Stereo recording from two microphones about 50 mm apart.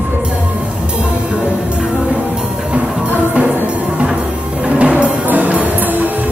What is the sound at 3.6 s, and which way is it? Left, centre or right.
Music, right.